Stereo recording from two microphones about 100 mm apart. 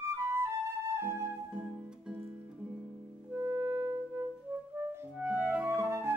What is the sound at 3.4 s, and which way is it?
Clarinet, 20° right (ahead or behind).